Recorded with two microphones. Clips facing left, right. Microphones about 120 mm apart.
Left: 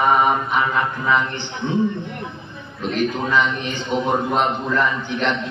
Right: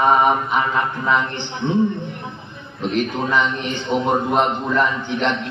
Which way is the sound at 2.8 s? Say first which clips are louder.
Right 1 dB; 20° right (ahead or behind).